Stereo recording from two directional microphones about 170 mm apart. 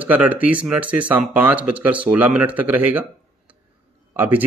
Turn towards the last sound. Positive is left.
turn(degrees=-10)  # may be behind; listen again after turning